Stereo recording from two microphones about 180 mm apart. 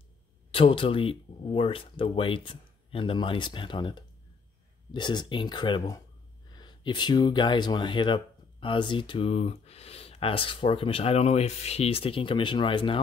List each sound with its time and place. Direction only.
0.5 s speech: 30° left (ahead or behind)